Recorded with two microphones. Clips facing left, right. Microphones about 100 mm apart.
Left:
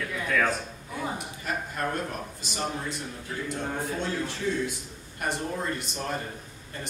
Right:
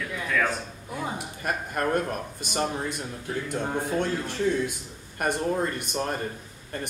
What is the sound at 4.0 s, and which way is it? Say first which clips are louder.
Speech: right 4 dB; 55° right (ahead or behind).